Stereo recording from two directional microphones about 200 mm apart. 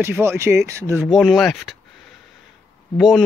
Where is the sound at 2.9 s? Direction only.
Centre (ahead or behind).